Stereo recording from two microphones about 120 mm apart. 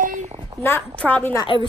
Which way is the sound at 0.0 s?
90° right.